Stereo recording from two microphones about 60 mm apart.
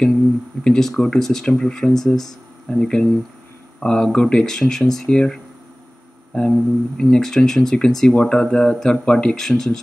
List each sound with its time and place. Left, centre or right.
0.7 s speech: centre